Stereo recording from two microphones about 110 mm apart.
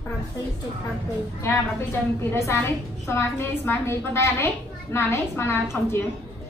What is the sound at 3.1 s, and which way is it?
A woman's voice, 25° left (ahead or behind).